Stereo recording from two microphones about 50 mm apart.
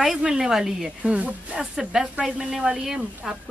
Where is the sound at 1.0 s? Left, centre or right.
Right.